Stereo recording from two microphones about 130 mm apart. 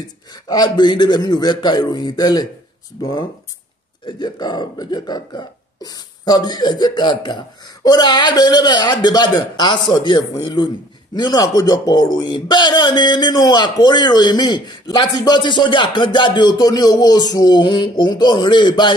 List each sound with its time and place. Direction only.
0.3 s speech: 35° left (ahead or behind)
4.0 s speech: 35° left (ahead or behind)